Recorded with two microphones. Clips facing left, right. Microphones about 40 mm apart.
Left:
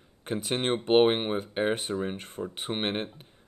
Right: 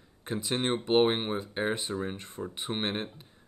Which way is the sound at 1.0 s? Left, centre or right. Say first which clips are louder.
Left 3 dB; left.